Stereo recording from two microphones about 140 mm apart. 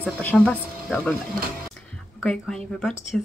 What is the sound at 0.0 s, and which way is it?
Speech, 10° left (ahead or behind).